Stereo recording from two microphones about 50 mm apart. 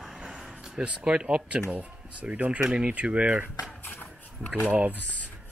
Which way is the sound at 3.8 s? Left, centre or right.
Left.